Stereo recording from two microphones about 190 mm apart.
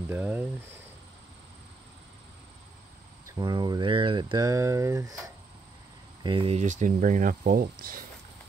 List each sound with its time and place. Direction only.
0.1 s speech: 10° right (ahead or behind)
3.3 s speech: 20° right (ahead or behind)
6.2 s speech: 30° right (ahead or behind); by 8.0 s 50° right (ahead or behind)